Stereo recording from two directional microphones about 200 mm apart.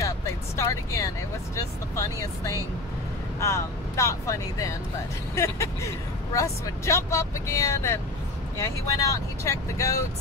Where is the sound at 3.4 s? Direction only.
15° left (ahead or behind).